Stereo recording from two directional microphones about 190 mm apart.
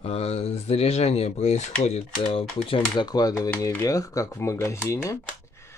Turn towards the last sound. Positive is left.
turn(degrees=15)  # may be behind; listen again after turning